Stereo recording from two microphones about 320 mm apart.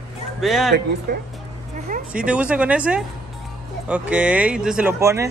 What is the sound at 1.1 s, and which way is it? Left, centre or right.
Speech, right.